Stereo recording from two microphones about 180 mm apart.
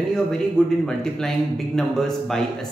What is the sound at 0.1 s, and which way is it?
A man's voice, 5° left (ahead or behind).